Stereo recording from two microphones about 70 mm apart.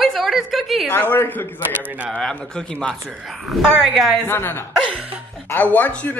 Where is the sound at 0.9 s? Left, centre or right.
Left.